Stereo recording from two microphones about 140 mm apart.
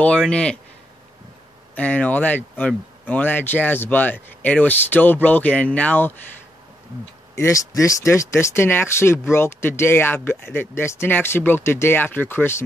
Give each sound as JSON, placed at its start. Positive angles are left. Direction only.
{"t": 0.0, "sound": "speech", "side_deg": 5}
{"t": 1.8, "sound": "speech", "side_deg": 10}
{"t": 7.3, "sound": "speech", "side_deg": 20}